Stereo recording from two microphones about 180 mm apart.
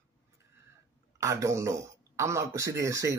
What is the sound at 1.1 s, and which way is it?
A man's voice, 15° right (ahead or behind).